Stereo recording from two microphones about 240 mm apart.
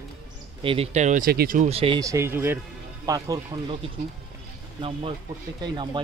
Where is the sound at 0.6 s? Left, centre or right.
Right.